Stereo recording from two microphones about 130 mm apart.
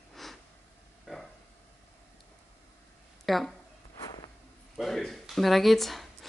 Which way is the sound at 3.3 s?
Centre (ahead or behind).